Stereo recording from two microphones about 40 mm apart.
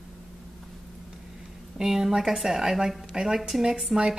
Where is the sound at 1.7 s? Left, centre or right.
Centre.